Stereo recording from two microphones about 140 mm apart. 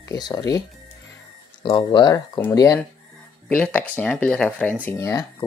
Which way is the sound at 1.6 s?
35° left (ahead or behind).